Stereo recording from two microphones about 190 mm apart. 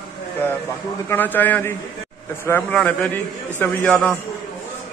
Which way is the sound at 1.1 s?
10° left (ahead or behind).